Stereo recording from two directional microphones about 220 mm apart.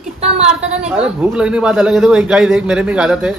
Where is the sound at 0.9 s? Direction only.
5° right (ahead or behind).